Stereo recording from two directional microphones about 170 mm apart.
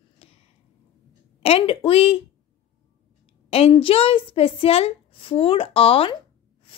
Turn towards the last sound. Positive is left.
turn(degrees=35)  # may be behind; listen again after turning